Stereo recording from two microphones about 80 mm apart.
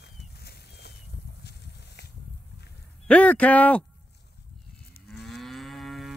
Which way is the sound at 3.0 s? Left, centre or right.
Centre.